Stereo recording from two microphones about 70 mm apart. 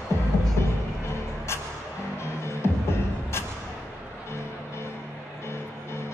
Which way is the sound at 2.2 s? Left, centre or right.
Left.